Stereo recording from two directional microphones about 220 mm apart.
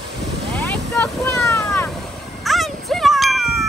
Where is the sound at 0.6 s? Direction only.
10° left (ahead or behind).